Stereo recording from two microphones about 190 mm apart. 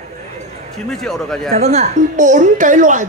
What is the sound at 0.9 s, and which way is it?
Speech, centre (ahead or behind).